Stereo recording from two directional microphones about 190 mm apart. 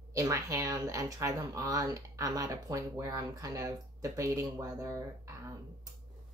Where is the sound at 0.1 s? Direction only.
15° right (ahead or behind).